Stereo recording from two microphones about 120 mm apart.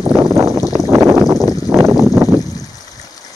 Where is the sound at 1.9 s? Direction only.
20° right (ahead or behind).